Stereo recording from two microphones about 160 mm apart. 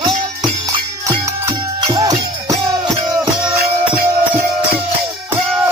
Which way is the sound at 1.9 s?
20° right (ahead or behind).